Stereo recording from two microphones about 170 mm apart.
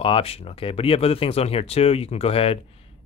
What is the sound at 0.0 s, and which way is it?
Speech, 35° left (ahead or behind).